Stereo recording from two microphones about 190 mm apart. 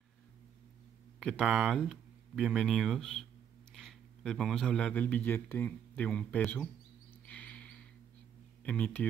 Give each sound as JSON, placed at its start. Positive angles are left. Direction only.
{"t": 1.2, "sound": "speech", "side_deg": 0}
{"t": 7.2, "sound": "a sound", "side_deg": 5}
{"t": 8.6, "sound": "speech", "side_deg": 5}